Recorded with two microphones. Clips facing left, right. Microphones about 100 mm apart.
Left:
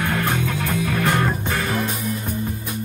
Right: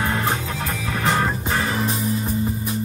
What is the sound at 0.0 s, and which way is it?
Music, 25° right (ahead or behind).